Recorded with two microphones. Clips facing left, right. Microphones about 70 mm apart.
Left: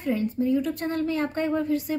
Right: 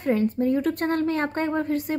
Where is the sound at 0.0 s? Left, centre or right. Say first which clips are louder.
Right 3 dB; right.